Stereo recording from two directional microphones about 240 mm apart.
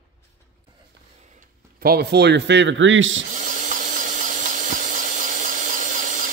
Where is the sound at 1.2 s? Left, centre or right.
Right.